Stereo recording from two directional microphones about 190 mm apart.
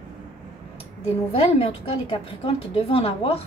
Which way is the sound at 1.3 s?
30° left (ahead or behind).